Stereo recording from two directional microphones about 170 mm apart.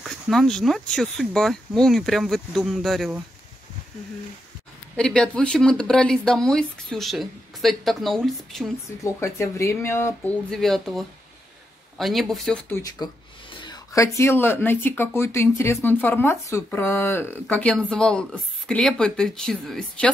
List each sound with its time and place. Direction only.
0.0 s speech: centre (ahead or behind)
4.9 s speech: 5° left (ahead or behind)
9.0 s speech: 20° left (ahead or behind)
10.5 s speech: centre (ahead or behind)
12.6 s speech: 20° left (ahead or behind)